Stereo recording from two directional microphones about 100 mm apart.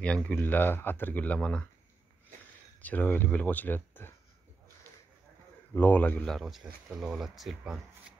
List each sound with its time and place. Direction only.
0.0 s speech: 10° left (ahead or behind)
2.8 s speech: 15° left (ahead or behind)
5.8 s speech: 20° left (ahead or behind)
6.2 s speech: centre (ahead or behind)